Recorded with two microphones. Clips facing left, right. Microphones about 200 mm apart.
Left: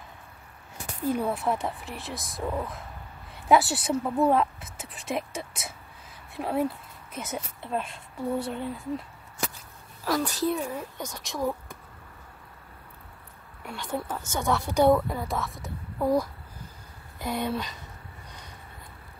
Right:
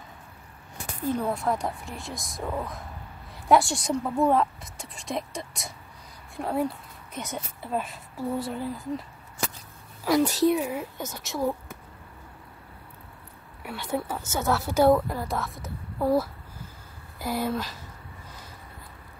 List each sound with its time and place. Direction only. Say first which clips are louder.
1.3 s speech: right 1 dB; 5° left (ahead or behind)
10.0 s a woman's voice: right 5 dB; 20° right (ahead or behind)
10.6 s speech: right 2 dB; 5° right (ahead or behind)
13.6 s speech: right 2 dB; 5° right (ahead or behind)